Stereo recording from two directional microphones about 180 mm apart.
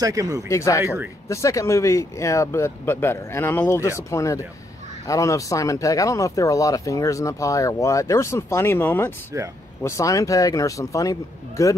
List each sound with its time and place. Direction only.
0.0 s speech: 20° right (ahead or behind)
0.5 s speech: 15° left (ahead or behind)